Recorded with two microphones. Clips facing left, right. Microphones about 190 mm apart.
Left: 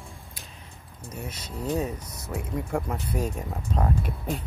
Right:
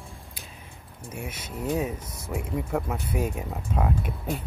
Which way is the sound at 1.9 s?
25° right (ahead or behind).